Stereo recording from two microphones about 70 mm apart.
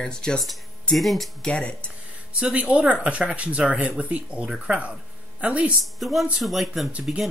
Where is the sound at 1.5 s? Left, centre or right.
Centre.